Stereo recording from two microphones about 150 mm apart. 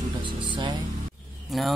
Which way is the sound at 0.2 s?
35° right (ahead or behind).